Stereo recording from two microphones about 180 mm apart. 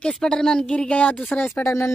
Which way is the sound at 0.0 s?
5° left (ahead or behind).